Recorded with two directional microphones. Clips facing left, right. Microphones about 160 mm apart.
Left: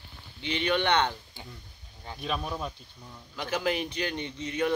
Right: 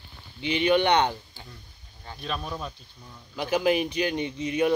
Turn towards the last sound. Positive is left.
turn(degrees=-10)  # may be behind; listen again after turning